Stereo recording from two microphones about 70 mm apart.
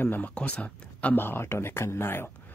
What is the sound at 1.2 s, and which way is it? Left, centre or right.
Speech, left.